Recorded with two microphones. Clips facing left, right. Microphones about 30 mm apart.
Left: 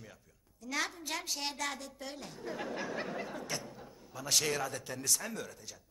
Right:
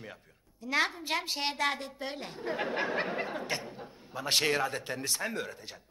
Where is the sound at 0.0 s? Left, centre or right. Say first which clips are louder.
Right 7 dB; right.